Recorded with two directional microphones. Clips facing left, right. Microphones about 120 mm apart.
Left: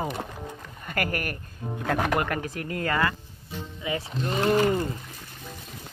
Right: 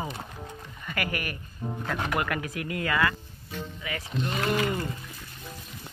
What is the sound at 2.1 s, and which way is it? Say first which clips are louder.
Speech: left 2 dB; 40° left (ahead or behind).